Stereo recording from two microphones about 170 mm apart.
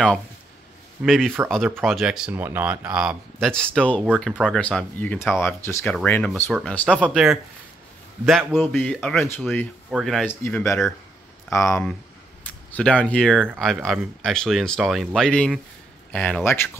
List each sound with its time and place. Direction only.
1.0 s speech: centre (ahead or behind)
7.0 s speech: 5° right (ahead or behind)
10.4 s speech: 15° left (ahead or behind)